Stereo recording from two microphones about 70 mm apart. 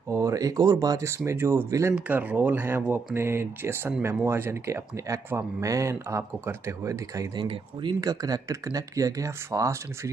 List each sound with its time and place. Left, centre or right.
0.1 s speech: right
2.0 s speech: right
7.3 s speech: right